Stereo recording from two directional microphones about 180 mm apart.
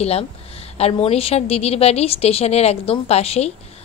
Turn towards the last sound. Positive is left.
turn(degrees=35)  # may be behind; listen again after turning